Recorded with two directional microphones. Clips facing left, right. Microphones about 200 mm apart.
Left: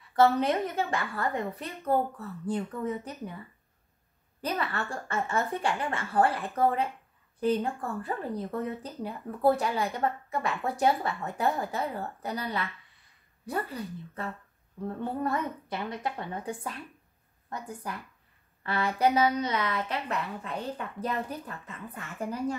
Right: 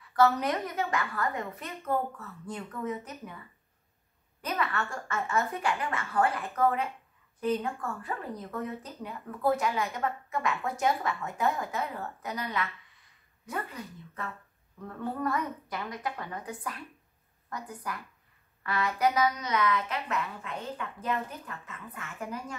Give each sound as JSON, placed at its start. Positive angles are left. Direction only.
{"t": 0.1, "sound": "speech", "side_deg": 25}
{"t": 4.4, "sound": "a woman's voice", "side_deg": 30}